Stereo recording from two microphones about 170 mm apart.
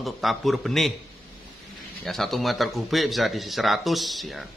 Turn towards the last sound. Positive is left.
turn(degrees=0)  # may be behind; listen again after turning